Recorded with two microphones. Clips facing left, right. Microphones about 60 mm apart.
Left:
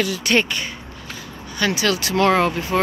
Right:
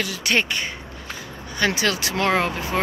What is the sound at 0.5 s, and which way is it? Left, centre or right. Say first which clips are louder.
Speech: even; right.